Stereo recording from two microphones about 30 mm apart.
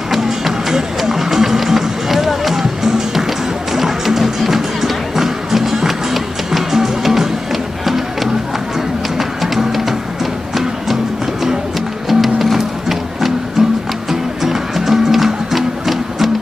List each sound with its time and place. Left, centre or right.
0.1 s music: centre
9.6 s music: centre
12.1 s music: centre